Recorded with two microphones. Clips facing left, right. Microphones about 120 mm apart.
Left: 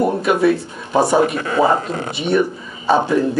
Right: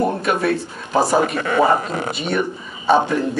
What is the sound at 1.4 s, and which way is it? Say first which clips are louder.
Speech: left 1 dB; 35° left (ahead or behind).